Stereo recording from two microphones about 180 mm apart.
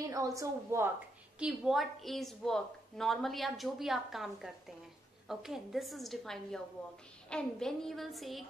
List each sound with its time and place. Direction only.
0.0 s a woman's voice: 20° right (ahead or behind)
1.4 s a woman's voice: centre (ahead or behind)